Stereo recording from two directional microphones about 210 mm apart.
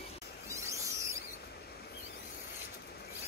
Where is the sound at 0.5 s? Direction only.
15° right (ahead or behind).